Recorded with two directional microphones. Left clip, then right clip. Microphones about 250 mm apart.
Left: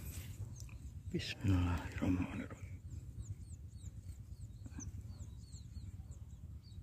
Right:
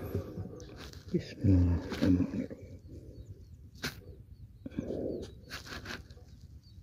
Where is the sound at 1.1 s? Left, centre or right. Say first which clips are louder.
Right 8 dB; centre.